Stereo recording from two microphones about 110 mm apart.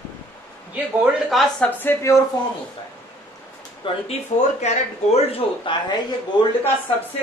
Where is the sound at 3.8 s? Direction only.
80° left.